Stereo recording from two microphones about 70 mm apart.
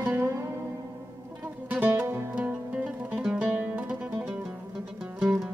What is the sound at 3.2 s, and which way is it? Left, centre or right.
Music, centre.